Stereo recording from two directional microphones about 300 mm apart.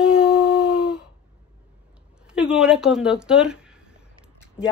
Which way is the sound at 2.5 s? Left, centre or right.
Centre.